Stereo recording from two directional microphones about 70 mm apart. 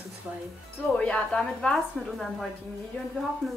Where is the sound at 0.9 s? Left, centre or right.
Centre.